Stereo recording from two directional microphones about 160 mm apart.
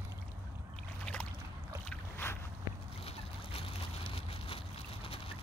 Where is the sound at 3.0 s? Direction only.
35° left (ahead or behind).